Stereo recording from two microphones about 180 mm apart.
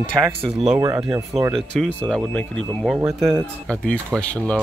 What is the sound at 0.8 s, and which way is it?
Speech, 25° right (ahead or behind).